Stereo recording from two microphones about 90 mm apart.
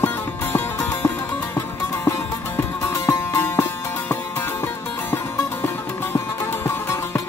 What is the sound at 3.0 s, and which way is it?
Music, 25° left (ahead or behind).